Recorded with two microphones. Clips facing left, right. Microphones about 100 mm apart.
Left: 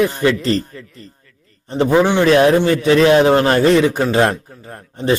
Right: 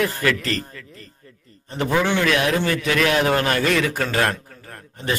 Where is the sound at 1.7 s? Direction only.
25° left (ahead or behind).